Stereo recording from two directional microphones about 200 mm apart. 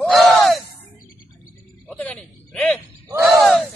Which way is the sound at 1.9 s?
5° left (ahead or behind).